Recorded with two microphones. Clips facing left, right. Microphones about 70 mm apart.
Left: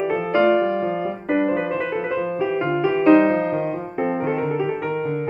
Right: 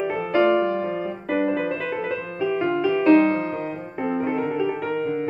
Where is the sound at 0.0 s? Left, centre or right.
Left.